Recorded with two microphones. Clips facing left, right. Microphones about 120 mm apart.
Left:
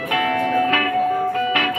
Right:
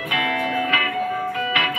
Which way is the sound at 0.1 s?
40° left (ahead or behind).